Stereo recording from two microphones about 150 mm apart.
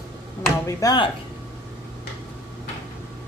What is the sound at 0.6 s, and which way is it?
Speech, 25° left (ahead or behind).